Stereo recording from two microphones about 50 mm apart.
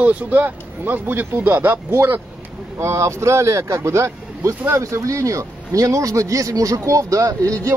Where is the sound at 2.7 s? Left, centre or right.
Right.